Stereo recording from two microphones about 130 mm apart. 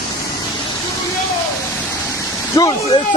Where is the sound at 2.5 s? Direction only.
30° left (ahead or behind).